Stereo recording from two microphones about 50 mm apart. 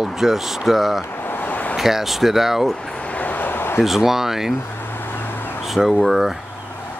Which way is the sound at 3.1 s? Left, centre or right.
Left.